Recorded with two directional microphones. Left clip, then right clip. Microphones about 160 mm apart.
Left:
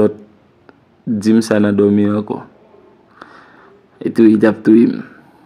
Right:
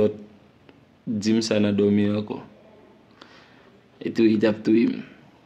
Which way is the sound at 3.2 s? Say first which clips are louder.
Left 11 dB; 30° left (ahead or behind).